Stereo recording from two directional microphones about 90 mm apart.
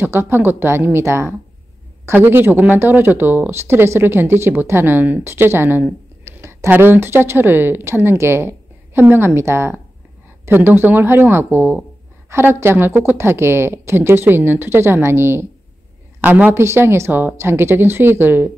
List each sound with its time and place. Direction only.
0.0 s speech: 25° right (ahead or behind)